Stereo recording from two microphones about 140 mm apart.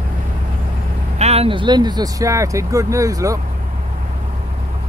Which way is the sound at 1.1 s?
50° right (ahead or behind).